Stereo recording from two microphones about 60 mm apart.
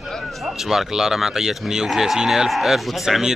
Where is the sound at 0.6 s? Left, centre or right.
Centre.